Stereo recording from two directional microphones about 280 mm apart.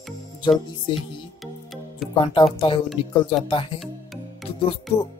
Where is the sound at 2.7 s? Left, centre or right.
Centre.